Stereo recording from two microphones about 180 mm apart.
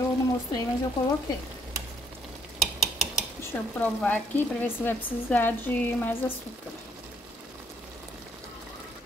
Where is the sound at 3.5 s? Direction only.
10° left (ahead or behind).